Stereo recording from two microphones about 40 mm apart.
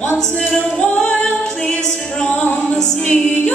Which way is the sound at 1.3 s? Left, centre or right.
Centre.